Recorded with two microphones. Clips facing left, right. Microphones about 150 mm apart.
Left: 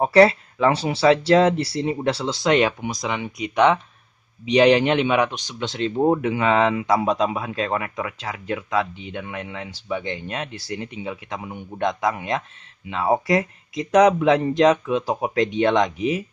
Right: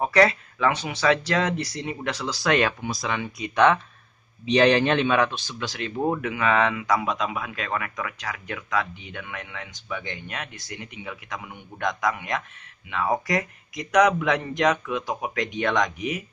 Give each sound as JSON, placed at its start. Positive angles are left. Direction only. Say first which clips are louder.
{"t": 0.0, "sound": "speech", "louder": "left 5 dB", "side_deg": 30}